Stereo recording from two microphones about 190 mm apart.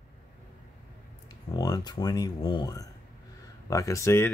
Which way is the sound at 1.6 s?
20° left (ahead or behind).